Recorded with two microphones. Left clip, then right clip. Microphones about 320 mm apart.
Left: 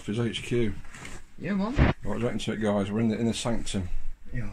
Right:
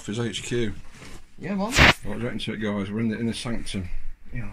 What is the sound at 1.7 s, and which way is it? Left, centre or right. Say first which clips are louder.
Speech: right 13 dB; right.